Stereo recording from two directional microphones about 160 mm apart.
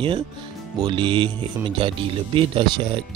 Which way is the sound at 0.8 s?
35° right (ahead or behind).